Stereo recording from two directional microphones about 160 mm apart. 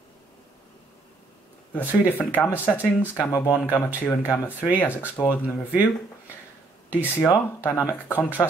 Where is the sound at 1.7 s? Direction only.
10° left (ahead or behind).